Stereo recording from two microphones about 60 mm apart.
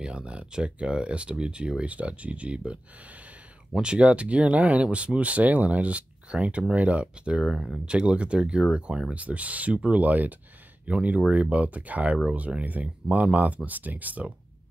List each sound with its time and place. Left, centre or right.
0.0 s speech: centre